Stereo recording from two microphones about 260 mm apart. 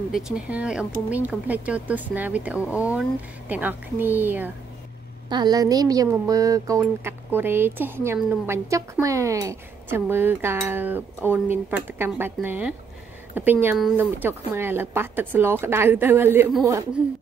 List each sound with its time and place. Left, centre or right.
0.1 s speech: centre